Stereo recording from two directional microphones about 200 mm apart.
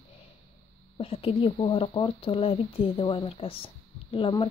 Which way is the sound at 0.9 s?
30° left (ahead or behind).